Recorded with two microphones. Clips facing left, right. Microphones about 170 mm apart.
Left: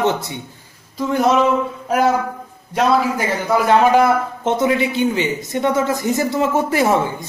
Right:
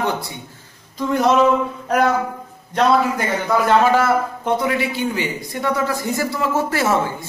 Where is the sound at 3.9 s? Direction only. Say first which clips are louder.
Left 3 dB; 20° left (ahead or behind).